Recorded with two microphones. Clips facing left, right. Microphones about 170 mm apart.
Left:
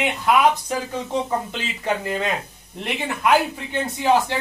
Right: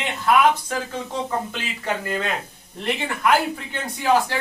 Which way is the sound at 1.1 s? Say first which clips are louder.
Left 4 dB; 20° left (ahead or behind).